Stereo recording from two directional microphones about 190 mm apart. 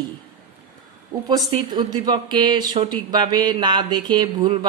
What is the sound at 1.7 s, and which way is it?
Speech, 20° right (ahead or behind).